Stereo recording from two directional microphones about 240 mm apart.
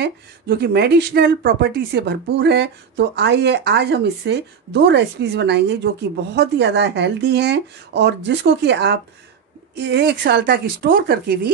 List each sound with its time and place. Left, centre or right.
0.0 s speech: right